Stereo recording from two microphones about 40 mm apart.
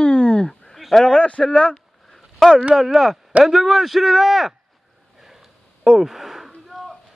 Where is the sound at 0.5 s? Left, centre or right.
Centre.